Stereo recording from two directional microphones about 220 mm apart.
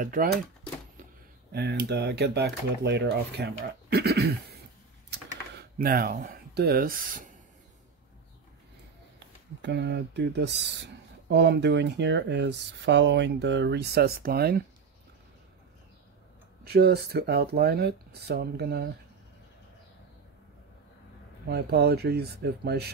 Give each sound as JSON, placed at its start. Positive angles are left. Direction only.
{"t": 0.0, "sound": "speech", "side_deg": -40}
{"t": 1.5, "sound": "speech", "side_deg": -45}
{"t": 5.1, "sound": "typing", "side_deg": -50}
{"t": 5.6, "sound": "speech", "side_deg": -40}
{"t": 9.6, "sound": "speech", "side_deg": -50}
{"t": 16.6, "sound": "speech", "side_deg": -45}
{"t": 21.5, "sound": "speech", "side_deg": -45}